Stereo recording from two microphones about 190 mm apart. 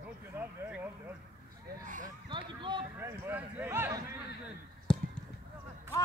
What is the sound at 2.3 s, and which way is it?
Speech, 25° right (ahead or behind).